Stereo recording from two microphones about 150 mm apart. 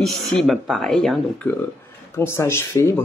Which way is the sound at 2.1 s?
15° left (ahead or behind).